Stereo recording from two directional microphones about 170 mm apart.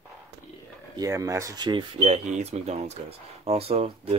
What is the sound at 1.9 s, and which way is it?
Speech, 40° right (ahead or behind).